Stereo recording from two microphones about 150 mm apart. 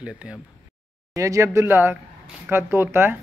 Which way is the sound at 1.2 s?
20° right (ahead or behind).